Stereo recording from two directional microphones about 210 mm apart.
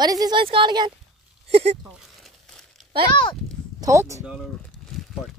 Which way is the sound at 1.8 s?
Centre (ahead or behind).